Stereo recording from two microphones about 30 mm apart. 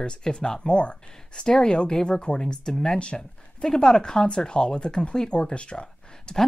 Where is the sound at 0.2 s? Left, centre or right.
Left.